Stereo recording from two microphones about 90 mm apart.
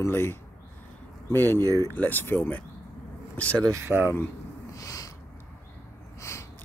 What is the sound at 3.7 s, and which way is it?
Speech, 30° right (ahead or behind).